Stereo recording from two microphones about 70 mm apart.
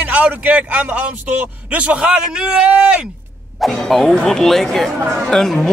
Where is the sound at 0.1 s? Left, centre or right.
Centre.